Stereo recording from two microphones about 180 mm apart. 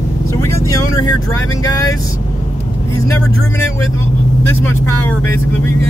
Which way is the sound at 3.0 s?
15° left (ahead or behind).